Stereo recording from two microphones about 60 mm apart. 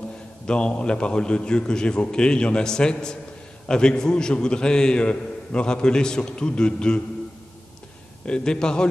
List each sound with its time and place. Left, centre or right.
0.5 s a man's voice: centre
8.3 s a man's voice: centre